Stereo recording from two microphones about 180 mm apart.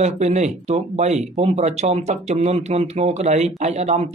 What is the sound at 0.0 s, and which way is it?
Speech, 40° right (ahead or behind).